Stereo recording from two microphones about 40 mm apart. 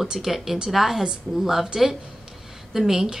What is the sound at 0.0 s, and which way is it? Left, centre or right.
A woman's voice, centre.